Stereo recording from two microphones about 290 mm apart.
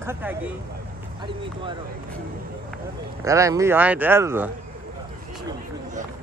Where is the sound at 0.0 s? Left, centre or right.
Centre.